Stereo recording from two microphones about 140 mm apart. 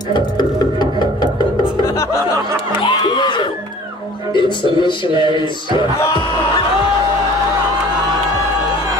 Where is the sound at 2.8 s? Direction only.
35° left (ahead or behind).